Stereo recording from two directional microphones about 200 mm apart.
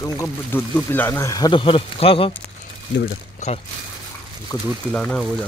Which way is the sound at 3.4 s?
35° left (ahead or behind).